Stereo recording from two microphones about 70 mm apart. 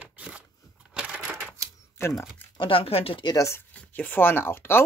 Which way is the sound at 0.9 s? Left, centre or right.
Centre.